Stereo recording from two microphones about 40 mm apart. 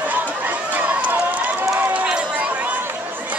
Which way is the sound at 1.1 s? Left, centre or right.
Right.